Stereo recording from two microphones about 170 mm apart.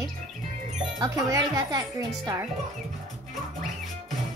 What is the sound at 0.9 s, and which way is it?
Speech, 20° right (ahead or behind).